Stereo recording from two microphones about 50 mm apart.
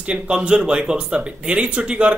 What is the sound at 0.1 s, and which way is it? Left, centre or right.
A man's voice, right.